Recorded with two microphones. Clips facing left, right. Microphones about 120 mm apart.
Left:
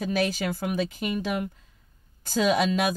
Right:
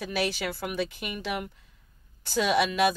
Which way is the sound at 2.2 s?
45° left (ahead or behind).